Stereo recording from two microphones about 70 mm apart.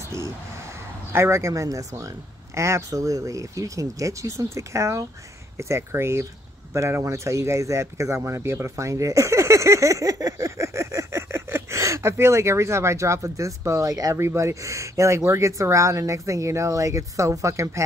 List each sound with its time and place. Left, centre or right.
1.1 s speech: right
14.1 s speech: right